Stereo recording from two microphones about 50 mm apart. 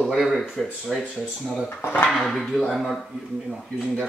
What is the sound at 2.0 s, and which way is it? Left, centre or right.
Speech, centre.